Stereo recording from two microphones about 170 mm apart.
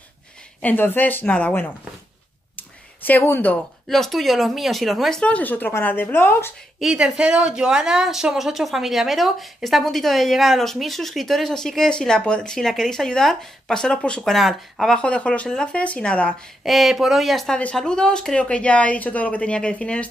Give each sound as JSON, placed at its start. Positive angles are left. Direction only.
{"t": 0.6, "sound": "speech", "side_deg": 10}
{"t": 2.5, "sound": "clicking", "side_deg": 10}
{"t": 3.8, "sound": "a woman's voice", "side_deg": 0}
{"t": 6.8, "sound": "a woman's voice", "side_deg": -5}